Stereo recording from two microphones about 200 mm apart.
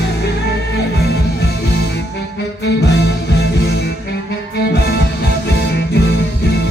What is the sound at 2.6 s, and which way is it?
Music, 55° left (ahead or behind).